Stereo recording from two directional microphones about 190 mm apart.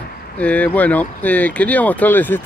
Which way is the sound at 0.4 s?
5° left (ahead or behind).